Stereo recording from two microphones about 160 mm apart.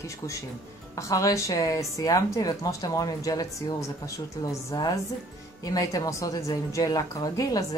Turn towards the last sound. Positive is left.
turn(degrees=20)  # may be behind; listen again after turning